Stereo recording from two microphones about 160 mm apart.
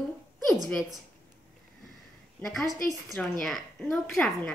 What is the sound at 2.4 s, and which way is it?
Speech, centre (ahead or behind).